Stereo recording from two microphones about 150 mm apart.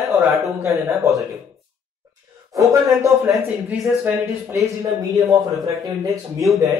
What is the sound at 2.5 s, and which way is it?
Speech, 20° right (ahead or behind).